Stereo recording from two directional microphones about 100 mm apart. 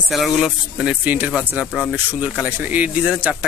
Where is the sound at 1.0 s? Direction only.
15° right (ahead or behind).